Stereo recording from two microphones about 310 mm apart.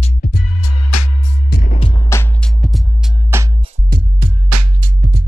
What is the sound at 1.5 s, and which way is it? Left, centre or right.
Music, left.